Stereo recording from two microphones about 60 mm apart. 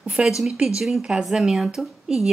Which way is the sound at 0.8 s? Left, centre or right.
Centre.